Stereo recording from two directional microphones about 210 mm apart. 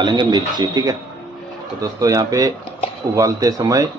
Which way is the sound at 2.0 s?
15° right (ahead or behind).